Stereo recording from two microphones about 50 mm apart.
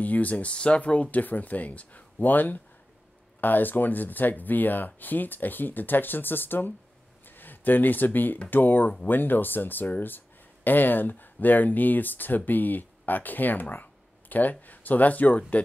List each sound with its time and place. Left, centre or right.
0.0 s speech: left